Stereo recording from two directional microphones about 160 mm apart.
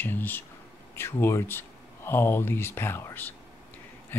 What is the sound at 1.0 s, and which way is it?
Speech, 15° left (ahead or behind).